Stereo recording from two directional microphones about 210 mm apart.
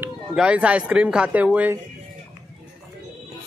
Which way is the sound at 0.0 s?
5° right (ahead or behind).